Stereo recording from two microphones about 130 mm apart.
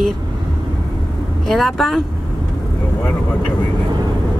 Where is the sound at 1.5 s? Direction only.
Centre (ahead or behind).